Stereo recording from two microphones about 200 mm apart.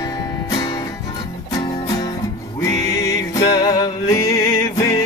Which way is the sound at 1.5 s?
20° left (ahead or behind).